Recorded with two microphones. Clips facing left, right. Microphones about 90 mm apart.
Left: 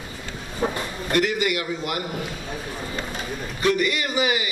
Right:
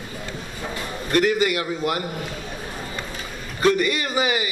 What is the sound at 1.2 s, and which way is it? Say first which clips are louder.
Speech: right 3 dB; 30° right (ahead or behind).